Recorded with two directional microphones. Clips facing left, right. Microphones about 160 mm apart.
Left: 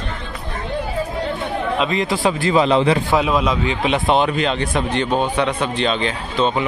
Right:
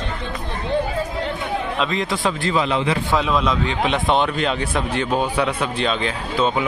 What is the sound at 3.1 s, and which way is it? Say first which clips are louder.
A man's voice: left 2 dB; 10° left (ahead or behind).